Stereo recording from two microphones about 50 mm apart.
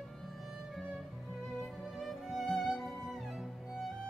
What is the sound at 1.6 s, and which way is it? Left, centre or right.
Music, centre.